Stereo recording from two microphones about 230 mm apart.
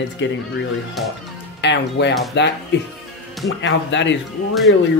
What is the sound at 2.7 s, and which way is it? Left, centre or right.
Speech, left.